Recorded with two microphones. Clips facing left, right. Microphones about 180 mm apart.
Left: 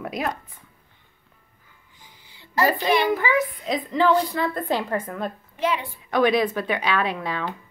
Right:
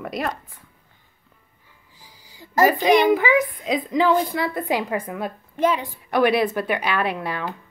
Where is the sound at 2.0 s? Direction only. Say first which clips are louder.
Right 5 dB; 40° right (ahead or behind).